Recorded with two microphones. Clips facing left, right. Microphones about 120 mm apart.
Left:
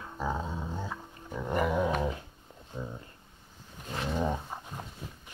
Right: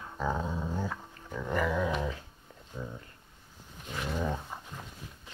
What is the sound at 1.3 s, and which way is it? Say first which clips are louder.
Dog: left 1 dB; 20° left (ahead or behind).